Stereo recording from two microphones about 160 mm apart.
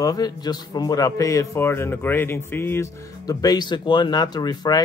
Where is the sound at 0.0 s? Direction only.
25° left (ahead or behind).